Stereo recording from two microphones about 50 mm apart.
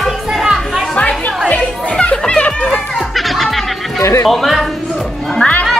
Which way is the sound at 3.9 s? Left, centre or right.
Left.